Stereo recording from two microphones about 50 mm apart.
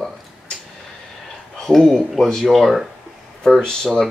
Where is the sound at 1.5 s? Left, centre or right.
Centre.